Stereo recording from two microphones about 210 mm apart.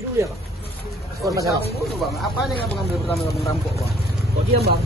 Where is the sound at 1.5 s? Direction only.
Centre (ahead or behind).